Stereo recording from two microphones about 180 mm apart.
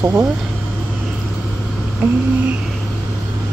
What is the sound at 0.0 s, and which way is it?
Speech, 20° right (ahead or behind).